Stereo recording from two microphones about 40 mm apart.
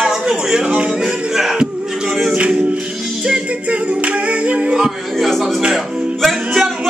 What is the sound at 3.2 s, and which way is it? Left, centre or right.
Music, right.